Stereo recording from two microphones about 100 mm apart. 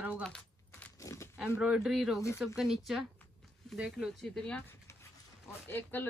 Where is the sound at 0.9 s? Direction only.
30° left (ahead or behind).